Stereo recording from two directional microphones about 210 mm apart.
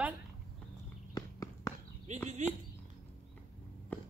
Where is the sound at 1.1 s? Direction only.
15° left (ahead or behind).